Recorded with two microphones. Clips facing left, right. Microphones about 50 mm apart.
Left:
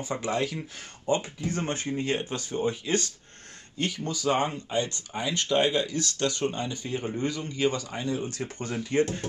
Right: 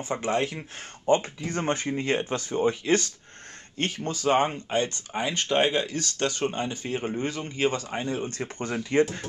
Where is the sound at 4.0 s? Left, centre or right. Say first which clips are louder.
Right 4 dB; right.